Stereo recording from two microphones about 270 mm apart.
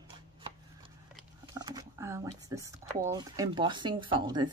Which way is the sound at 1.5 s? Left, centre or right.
Centre.